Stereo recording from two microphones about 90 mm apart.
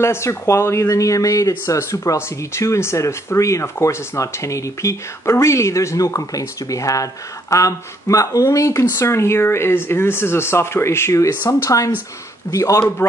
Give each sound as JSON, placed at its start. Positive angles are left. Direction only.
{"t": 0.0, "sound": "speech", "side_deg": 30}